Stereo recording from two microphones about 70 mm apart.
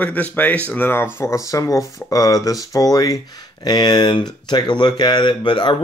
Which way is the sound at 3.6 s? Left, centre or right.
Left.